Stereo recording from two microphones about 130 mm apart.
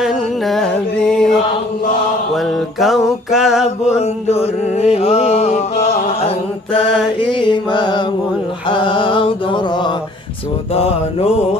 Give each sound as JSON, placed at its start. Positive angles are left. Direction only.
{"t": 0.0, "sound": "music", "side_deg": 0}
{"t": 2.3, "sound": "music", "side_deg": 0}
{"t": 3.8, "sound": "mantra", "side_deg": 55}
{"t": 4.9, "sound": "chant", "side_deg": 50}
{"t": 7.3, "sound": "mantra", "side_deg": 40}
{"t": 10.7, "sound": "mantra", "side_deg": 50}